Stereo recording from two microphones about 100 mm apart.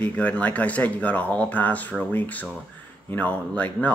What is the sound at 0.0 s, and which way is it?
Speech, 15° left (ahead or behind).